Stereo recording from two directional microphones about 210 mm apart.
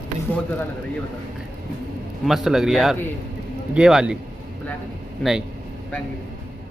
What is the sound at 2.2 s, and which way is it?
Speech, centre (ahead or behind).